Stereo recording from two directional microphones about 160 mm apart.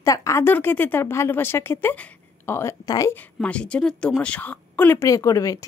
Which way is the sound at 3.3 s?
5° left (ahead or behind).